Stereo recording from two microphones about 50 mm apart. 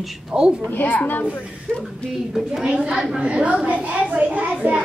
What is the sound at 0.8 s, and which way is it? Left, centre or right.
Speech, left.